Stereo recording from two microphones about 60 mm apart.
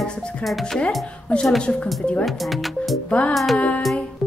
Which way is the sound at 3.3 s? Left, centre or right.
Centre.